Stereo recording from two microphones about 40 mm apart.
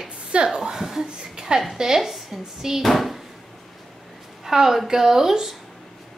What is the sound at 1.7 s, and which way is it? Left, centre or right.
Speech, centre.